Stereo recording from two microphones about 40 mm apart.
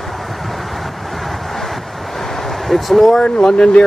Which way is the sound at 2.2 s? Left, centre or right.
Centre.